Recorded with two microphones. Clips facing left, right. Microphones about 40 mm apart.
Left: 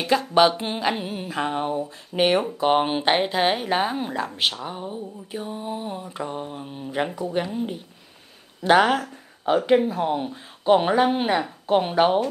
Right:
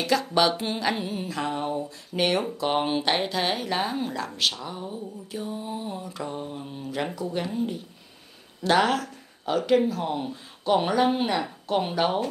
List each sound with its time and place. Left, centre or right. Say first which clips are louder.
0.0 s speech: left 4 dB; centre